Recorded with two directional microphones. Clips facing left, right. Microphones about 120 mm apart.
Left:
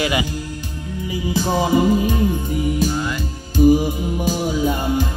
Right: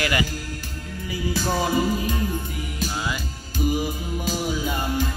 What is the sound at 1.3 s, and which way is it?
Music, 20° left (ahead or behind).